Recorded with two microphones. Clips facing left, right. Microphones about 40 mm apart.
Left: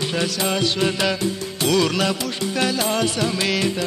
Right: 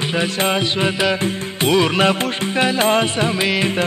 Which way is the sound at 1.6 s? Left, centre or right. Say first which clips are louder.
Right 4 dB; right.